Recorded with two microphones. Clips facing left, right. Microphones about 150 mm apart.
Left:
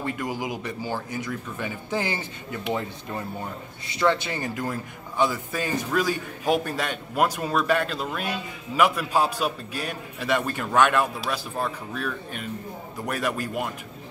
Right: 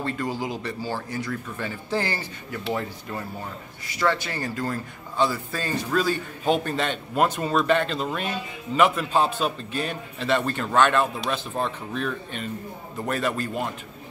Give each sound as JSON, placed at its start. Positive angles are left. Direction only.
{"t": 0.0, "sound": "a man's voice", "side_deg": 15}
{"t": 3.9, "sound": "a man's voice", "side_deg": 20}